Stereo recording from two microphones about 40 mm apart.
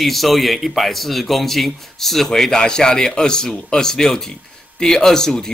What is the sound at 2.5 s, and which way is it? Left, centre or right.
Speech, centre.